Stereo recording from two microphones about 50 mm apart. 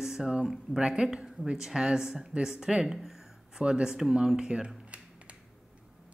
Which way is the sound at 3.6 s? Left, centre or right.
Centre.